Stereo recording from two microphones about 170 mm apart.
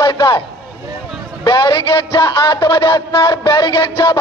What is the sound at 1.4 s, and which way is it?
Music, 25° left (ahead or behind).